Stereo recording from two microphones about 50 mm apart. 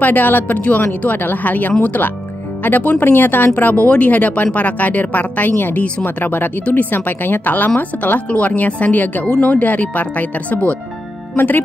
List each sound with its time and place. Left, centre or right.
0.0 s speech: left
3.9 s speech: left